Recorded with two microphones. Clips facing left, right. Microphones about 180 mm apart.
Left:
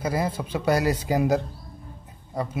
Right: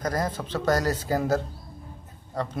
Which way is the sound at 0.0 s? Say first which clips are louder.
Left 2 dB; 10° left (ahead or behind).